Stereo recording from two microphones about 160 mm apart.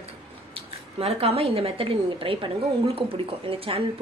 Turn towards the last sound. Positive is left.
turn(degrees=-35)  # may be behind; listen again after turning